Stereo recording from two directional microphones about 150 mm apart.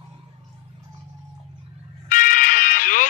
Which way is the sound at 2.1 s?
65° left (ahead or behind).